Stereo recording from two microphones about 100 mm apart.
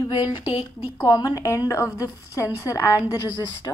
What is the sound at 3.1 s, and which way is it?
Speech, 40° left (ahead or behind).